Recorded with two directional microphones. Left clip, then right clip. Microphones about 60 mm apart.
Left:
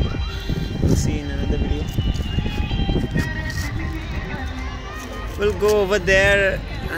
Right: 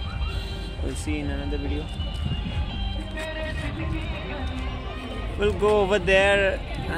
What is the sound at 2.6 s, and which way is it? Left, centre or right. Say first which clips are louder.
Music: left 7 dB; right.